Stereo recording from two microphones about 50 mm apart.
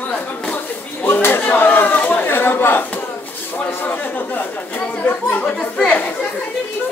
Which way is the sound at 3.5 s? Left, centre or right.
Left.